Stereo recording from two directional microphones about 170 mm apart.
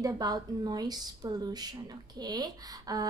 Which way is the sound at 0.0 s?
20° right (ahead or behind).